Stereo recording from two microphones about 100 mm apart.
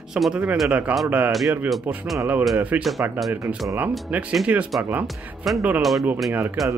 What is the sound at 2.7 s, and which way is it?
Speech, 20° right (ahead or behind).